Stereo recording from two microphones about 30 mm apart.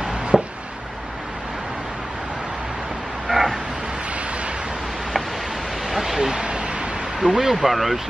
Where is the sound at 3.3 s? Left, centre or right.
Centre.